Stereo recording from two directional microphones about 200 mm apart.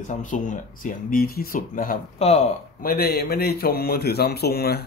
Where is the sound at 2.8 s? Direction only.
50° left (ahead or behind).